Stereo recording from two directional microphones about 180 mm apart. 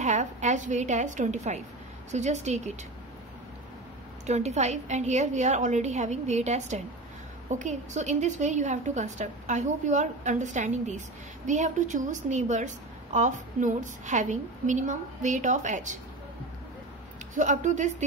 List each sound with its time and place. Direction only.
0.0 s a woman's voice: 40° right (ahead or behind)
4.3 s a woman's voice: 40° right (ahead or behind)
17.3 s a woman's voice: 45° right (ahead or behind)